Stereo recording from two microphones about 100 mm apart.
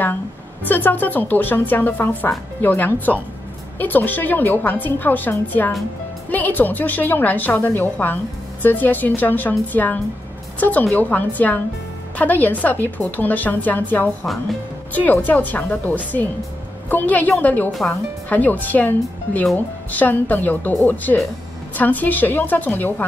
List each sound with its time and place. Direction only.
0.7 s a woman's voice: 20° left (ahead or behind)